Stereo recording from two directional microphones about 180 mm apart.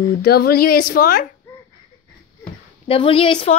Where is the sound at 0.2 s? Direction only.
60° left (ahead or behind).